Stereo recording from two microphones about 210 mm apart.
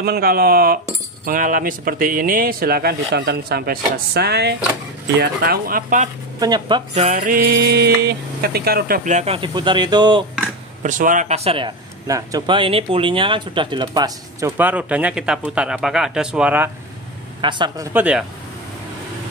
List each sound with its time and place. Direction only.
0.0 s speech: 45° right (ahead or behind)
6.4 s speech: 20° right (ahead or behind)
6.9 s speech: 30° right (ahead or behind)
10.8 s a man's voice: 40° right (ahead or behind); by 16.7 s 10° right (ahead or behind)
17.4 s speech: 20° right (ahead or behind)
17.9 s speech: 5° right (ahead or behind)